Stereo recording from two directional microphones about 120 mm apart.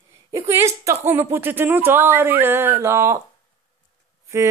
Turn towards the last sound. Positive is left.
turn(degrees=-25)  # may be behind; listen again after turning